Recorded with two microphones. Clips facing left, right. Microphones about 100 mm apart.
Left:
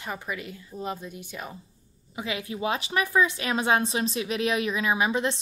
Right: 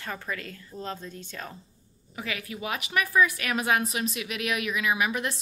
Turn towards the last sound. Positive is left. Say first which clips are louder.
# left 2 dB
turn(degrees=25)  # may be behind; listen again after turning